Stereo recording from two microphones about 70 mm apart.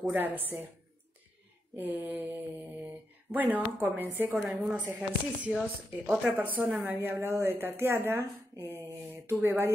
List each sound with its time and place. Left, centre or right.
0.1 s speech: right
1.8 s speech: right
5.5 s speech: centre
6.4 s speech: right